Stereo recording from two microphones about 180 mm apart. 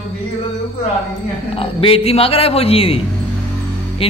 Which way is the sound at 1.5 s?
30° left (ahead or behind).